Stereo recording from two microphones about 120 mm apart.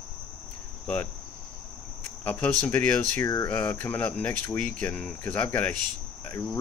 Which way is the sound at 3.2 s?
25° left (ahead or behind).